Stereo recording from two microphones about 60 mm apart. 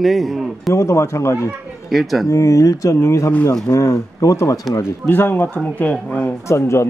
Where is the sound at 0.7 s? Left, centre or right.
Left.